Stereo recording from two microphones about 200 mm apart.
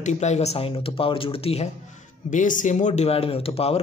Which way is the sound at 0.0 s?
35° left (ahead or behind).